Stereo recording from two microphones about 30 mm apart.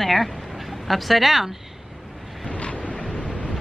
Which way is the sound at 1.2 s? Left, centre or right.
Centre.